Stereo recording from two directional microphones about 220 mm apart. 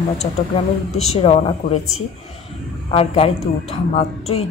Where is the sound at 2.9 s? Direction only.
25° left (ahead or behind).